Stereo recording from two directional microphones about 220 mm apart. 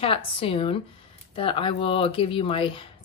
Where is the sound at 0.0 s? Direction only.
25° left (ahead or behind).